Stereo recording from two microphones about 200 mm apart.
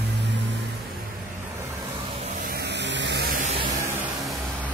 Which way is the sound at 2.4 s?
50° right (ahead or behind).